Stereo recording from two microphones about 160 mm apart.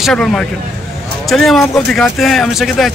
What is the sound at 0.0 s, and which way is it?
Speech, centre (ahead or behind).